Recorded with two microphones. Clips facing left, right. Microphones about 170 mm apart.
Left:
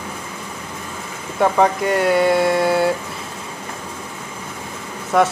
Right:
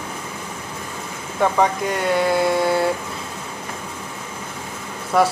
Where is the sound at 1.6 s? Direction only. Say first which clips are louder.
Left 3 dB; centre (ahead or behind).